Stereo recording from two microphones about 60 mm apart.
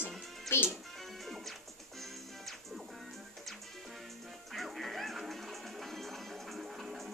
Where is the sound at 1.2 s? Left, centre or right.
Centre.